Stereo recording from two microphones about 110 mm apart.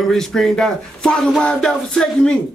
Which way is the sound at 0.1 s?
5° left (ahead or behind).